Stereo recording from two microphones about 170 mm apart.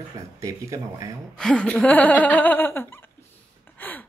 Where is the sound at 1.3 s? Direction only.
5° left (ahead or behind).